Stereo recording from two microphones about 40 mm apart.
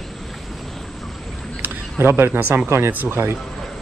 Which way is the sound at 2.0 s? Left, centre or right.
Right.